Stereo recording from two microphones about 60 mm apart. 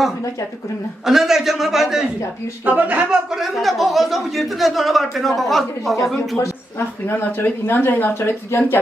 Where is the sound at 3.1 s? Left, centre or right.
Centre.